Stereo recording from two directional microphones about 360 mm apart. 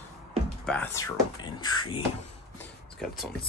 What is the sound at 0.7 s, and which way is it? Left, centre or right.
Speech, centre.